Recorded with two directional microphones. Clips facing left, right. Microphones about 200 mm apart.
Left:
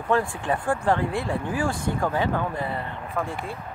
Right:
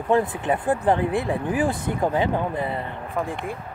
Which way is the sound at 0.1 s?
20° right (ahead or behind).